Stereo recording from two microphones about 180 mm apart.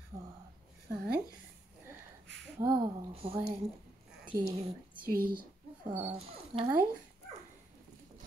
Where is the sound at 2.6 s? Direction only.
25° right (ahead or behind).